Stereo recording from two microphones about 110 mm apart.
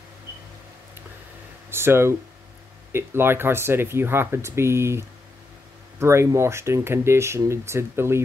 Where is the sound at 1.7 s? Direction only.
20° right (ahead or behind).